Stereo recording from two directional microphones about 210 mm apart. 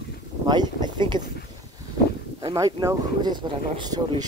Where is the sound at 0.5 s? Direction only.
20° right (ahead or behind).